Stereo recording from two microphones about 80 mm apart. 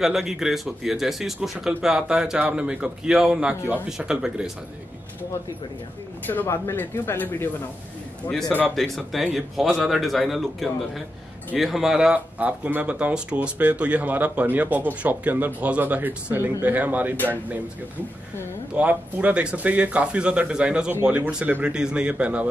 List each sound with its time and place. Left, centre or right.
0.0 s speech: centre
6.2 s speech: left
8.3 s speech: centre
18.8 s speech: centre